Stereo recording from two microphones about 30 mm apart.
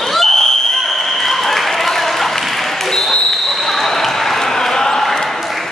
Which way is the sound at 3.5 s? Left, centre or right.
Centre.